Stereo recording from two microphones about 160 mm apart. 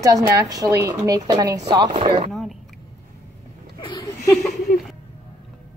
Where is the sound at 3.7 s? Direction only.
30° left (ahead or behind).